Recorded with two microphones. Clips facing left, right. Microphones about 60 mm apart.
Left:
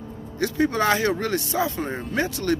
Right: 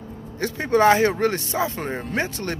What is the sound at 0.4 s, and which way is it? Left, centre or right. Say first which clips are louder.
Speech: right 3 dB; right.